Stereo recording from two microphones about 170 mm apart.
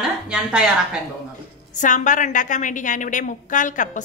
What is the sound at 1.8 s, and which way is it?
A woman's voice, 50° left (ahead or behind).